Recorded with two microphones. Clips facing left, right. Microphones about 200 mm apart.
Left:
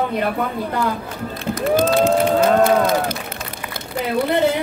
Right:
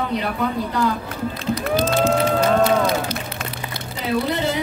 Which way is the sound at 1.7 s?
60° left (ahead or behind).